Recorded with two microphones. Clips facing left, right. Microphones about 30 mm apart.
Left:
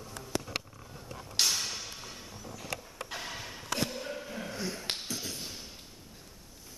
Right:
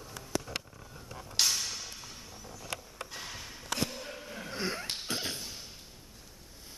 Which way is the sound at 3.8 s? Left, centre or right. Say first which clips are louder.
Left 3 dB; centre.